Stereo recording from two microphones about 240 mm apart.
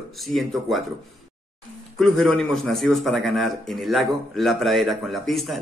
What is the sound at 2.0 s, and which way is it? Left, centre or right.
A man's voice, centre.